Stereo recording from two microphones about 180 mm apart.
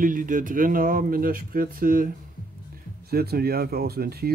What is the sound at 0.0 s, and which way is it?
Speech, 50° right (ahead or behind).